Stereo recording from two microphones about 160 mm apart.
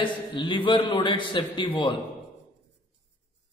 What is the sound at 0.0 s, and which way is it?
A man's voice, 30° left (ahead or behind).